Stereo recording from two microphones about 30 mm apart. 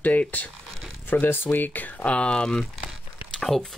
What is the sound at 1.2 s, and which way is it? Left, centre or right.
Speech, left.